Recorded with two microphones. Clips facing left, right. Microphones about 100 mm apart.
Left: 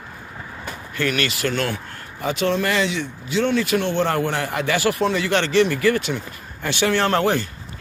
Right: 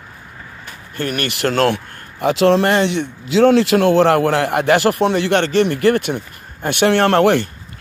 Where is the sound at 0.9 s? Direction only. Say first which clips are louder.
Right 1 dB; 50° right (ahead or behind); by 2.7 s 85° right.